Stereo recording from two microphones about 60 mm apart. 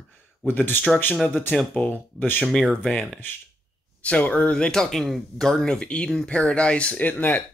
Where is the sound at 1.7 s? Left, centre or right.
Left.